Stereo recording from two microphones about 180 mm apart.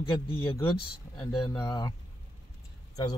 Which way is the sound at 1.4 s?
20° left (ahead or behind).